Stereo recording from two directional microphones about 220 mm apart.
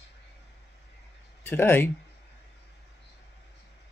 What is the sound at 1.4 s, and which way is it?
Speech, 10° left (ahead or behind).